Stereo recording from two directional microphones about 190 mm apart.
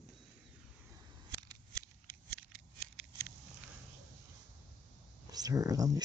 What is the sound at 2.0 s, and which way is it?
Scissors, 5° right (ahead or behind).